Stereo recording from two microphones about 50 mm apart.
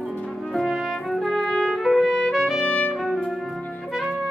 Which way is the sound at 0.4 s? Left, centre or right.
Centre.